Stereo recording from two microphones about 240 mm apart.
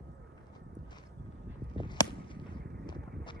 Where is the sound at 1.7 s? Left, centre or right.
Centre.